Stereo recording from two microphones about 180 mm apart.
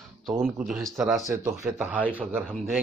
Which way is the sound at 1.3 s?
15° right (ahead or behind).